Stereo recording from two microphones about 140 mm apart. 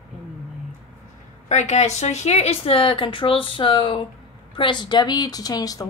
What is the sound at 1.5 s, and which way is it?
Speech, 55° left (ahead or behind).